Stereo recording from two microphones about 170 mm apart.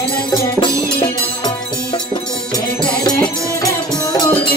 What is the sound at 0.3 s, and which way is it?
Music, 25° left (ahead or behind).